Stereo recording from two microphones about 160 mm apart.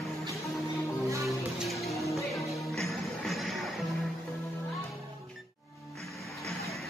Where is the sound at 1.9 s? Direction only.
20° left (ahead or behind).